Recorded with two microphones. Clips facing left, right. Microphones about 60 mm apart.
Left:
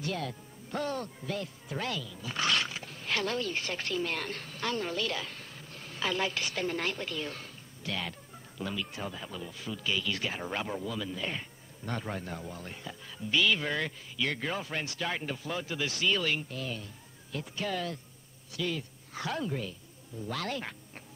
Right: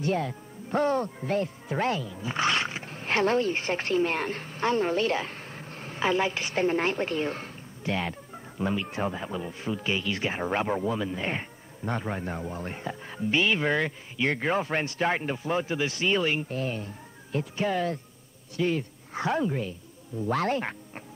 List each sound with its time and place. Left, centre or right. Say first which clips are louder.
0.0 s speech: right 7 dB; right
11.9 s speech: right 5 dB; right
20.2 s speech: right 9 dB; right